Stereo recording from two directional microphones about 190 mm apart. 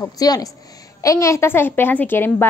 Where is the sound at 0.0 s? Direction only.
20° left (ahead or behind).